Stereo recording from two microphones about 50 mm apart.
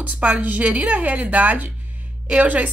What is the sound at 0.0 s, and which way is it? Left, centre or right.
Speech, right.